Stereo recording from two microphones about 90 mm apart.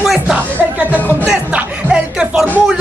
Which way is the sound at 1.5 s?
10° right (ahead or behind).